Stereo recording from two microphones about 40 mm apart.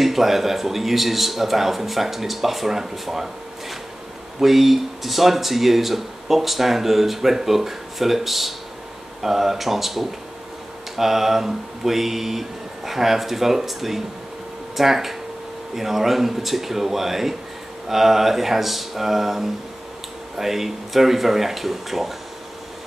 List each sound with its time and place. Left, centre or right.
0.0 s speech: centre
4.4 s speech: centre